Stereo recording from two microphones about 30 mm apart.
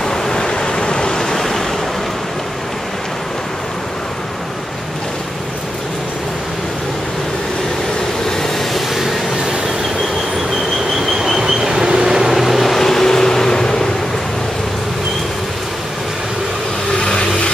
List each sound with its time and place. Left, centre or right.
0.0 s vehicle: centre
11.3 s vehicle: centre
12.2 s vehicle: centre
12.8 s vehicle: centre